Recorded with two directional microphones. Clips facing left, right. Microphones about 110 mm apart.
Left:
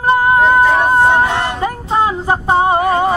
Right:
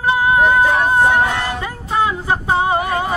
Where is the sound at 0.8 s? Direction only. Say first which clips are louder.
Left 3 dB; 25° left (ahead or behind).